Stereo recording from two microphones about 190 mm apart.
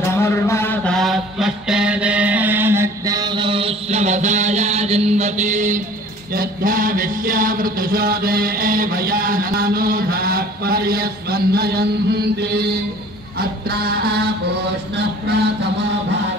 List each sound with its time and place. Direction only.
0.1 s mantra: 15° left (ahead or behind); by 5.8 s 40° right (ahead or behind)
6.3 s a sound: 50° right (ahead or behind)
13.4 s music: 55° right (ahead or behind)